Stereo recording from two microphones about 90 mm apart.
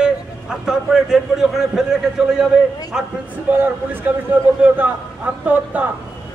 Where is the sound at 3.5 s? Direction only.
20° right (ahead or behind).